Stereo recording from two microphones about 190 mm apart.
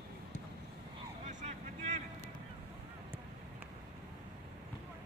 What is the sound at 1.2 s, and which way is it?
Vehicle, 35° right (ahead or behind).